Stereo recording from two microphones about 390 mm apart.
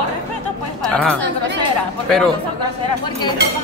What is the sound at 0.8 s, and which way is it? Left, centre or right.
Speech, centre.